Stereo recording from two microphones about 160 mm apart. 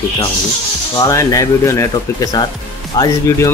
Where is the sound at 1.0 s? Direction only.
20° left (ahead or behind).